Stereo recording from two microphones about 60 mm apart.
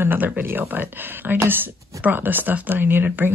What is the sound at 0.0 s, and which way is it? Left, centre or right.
Speech, right.